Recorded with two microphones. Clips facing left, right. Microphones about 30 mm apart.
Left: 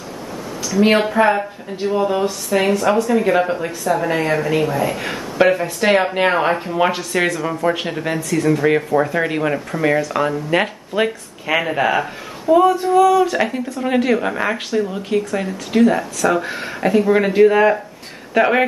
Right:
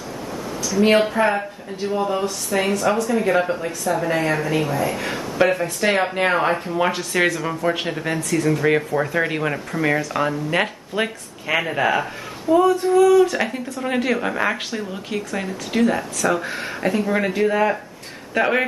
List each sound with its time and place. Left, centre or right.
1.0 s speech: centre
3.3 s speech: centre
3.9 s speech: left
4.3 s speech: centre
4.7 s speech: left
5.5 s speech: centre
7.0 s speech: centre